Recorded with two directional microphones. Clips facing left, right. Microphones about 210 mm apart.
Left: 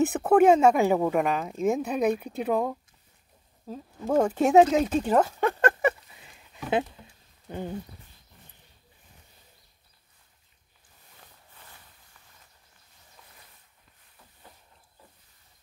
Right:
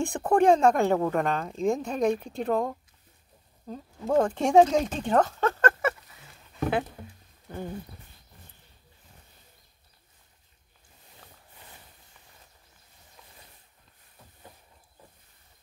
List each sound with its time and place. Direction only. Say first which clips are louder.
0.0 s speech: left 3 dB; 5° left (ahead or behind)
7.4 s speech: left 2 dB; 20° left (ahead or behind)